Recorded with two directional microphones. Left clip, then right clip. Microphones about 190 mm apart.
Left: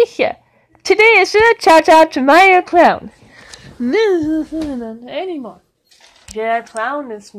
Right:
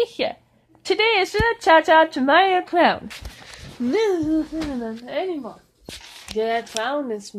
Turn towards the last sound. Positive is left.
turn(degrees=-40)  # may be behind; listen again after turning